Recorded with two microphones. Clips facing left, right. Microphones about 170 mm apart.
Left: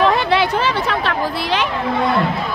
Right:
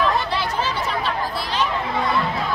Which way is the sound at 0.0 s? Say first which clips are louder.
Left 6 dB; 70° left (ahead or behind).